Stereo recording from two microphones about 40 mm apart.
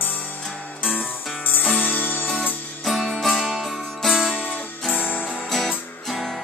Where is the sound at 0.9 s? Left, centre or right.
Left.